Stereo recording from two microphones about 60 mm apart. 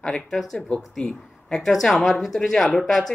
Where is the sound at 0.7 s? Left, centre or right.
Centre.